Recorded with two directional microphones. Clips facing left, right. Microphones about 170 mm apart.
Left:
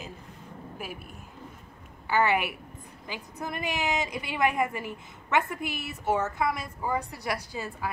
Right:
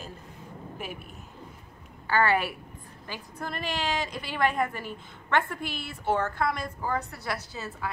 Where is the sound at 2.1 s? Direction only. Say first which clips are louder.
Even; 15° left (ahead or behind).